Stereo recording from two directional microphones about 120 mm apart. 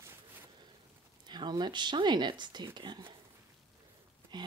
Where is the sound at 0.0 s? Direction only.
20° right (ahead or behind).